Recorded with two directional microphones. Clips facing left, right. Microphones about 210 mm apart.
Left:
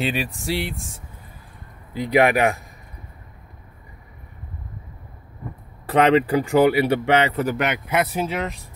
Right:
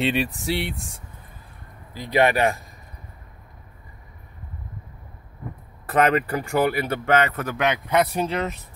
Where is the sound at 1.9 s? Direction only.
15° left (ahead or behind).